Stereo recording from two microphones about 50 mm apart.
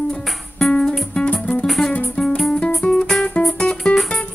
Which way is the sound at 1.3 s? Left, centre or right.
Left.